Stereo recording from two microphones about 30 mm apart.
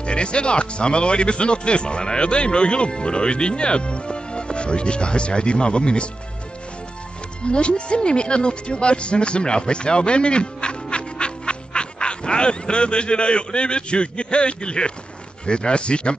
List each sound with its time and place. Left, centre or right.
0.0 s speech: left
7.4 s speech: left